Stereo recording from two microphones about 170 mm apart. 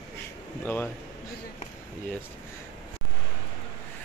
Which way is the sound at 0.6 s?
10° left (ahead or behind).